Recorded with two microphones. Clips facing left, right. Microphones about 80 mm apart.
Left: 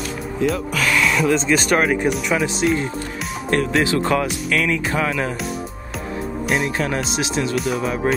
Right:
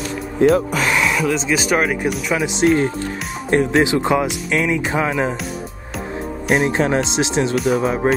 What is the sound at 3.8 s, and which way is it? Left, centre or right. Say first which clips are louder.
Speech: right 2 dB; centre.